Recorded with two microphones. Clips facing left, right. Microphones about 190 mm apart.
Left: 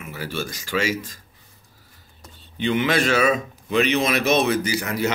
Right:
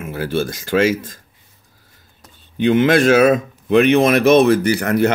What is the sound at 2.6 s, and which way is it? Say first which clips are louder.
Speech: right 8 dB; 50° right (ahead or behind).